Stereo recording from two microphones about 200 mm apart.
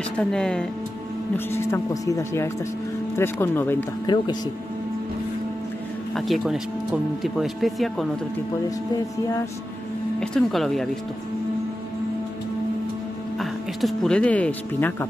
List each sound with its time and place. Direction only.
0.2 s speech: 5° left (ahead or behind)
4.0 s speech: 20° left (ahead or behind)
6.1 s speech: centre (ahead or behind)
10.2 s speech: centre (ahead or behind)
13.4 s speech: centre (ahead or behind)